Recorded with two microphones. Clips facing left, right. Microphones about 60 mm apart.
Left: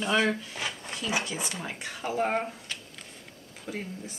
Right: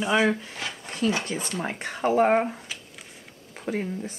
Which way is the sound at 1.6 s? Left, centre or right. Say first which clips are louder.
Right 8 dB; right.